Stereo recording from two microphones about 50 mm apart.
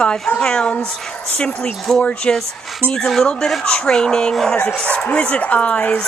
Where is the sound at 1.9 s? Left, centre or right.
Centre.